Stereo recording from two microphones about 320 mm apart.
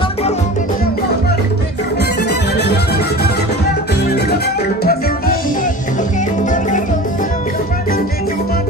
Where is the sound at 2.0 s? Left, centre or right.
Left.